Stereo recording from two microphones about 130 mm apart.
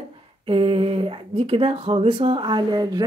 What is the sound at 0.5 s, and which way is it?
Speech, 45° right (ahead or behind).